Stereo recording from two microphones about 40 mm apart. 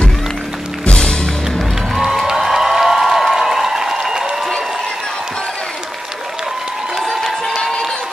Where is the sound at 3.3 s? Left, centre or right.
Centre.